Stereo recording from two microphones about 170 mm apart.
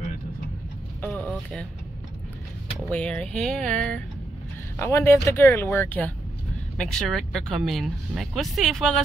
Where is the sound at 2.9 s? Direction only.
5° left (ahead or behind).